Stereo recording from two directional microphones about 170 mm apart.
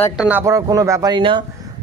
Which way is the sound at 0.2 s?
10° right (ahead or behind).